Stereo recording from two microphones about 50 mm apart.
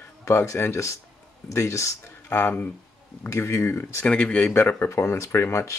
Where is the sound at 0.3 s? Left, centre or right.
Left.